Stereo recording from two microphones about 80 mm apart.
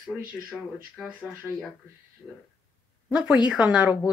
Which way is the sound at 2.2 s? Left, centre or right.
Centre.